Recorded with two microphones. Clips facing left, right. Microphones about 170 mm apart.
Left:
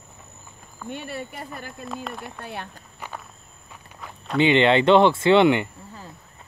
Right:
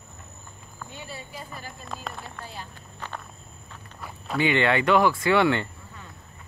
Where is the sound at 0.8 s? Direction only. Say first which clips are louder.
Left 8 dB; 65° left (ahead or behind).